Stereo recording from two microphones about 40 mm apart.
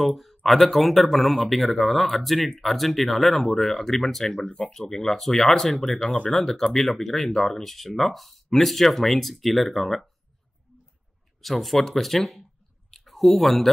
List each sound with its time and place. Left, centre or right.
0.0 s speech: centre
4.5 s speech: left
4.7 s speech: centre
6.0 s speech: left
6.4 s speech: centre
11.4 s speech: centre